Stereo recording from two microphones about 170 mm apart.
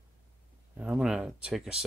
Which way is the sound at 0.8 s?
5° right (ahead or behind).